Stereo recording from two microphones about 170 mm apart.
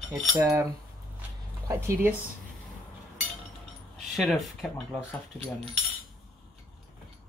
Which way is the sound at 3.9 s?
Centre (ahead or behind).